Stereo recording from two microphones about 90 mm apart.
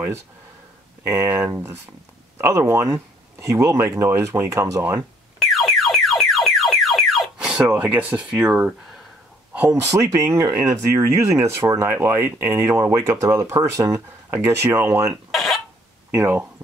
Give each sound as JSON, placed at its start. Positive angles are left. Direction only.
{"t": 1.0, "sound": "speech", "side_deg": -30}
{"t": 5.4, "sound": "car alarm", "side_deg": 0}
{"t": 7.3, "sound": "speech", "side_deg": -10}
{"t": 9.7, "sound": "speech", "side_deg": -40}
{"t": 15.3, "sound": "a sound", "side_deg": 0}
{"t": 16.2, "sound": "speech", "side_deg": -25}